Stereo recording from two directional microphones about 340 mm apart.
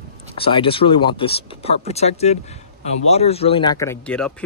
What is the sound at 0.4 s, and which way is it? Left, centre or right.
Speech, centre.